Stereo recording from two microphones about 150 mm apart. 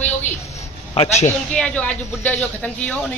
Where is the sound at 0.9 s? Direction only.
45° left (ahead or behind).